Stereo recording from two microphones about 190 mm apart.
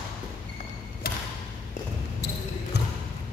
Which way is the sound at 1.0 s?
50° left (ahead or behind).